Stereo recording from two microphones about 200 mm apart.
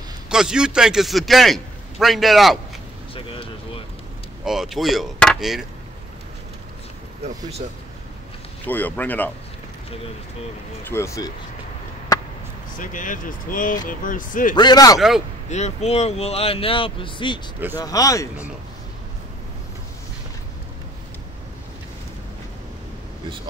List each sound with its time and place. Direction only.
0.3 s a man's voice: 5° right (ahead or behind)
4.5 s a man's voice: centre (ahead or behind)
8.6 s speech: 10° left (ahead or behind)
10.8 s speech: 10° left (ahead or behind)
12.7 s speech: 40° left (ahead or behind)
14.5 s speech: 20° left (ahead or behind)
15.0 s a man's voice: centre (ahead or behind)
15.5 s speech: 35° left (ahead or behind); by 18.3 s 15° left (ahead or behind)